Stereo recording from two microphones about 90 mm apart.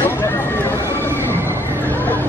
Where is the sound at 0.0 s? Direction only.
25° left (ahead or behind).